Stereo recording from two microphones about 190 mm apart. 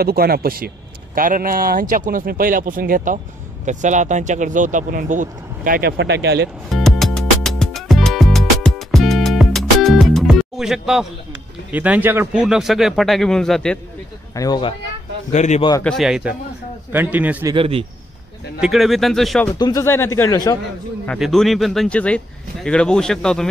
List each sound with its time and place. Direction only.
0.0 s speech: 55° right (ahead or behind)
6.7 s music: centre (ahead or behind)
11.7 s speech: 10° right (ahead or behind)
14.3 s speech: 20° left (ahead or behind)
15.3 s a man's voice: 40° left (ahead or behind)
15.8 s a man's voice: centre (ahead or behind)
17.6 s a man's voice: 30° right (ahead or behind)
18.6 s speech: centre (ahead or behind)
19.6 s speech: 15° left (ahead or behind)
21.2 s speech: centre (ahead or behind)